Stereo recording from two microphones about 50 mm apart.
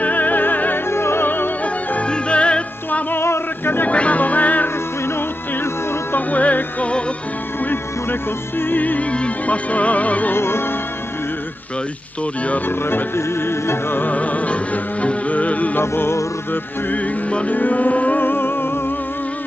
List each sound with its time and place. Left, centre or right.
0.0 s music: left
0.8 s music: left
1.2 s opera: left
1.6 s music: left
3.2 s male singing: left
3.9 s music: left
6.1 s music: left
7.6 s music: left
10.3 s music: left
12.6 s music: left
14.0 s music: left
15.8 s music: left
16.9 s music: left
18.2 s music: left